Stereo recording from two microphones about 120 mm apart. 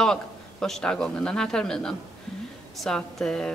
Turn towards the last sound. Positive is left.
turn(degrees=5)  # may be behind; listen again after turning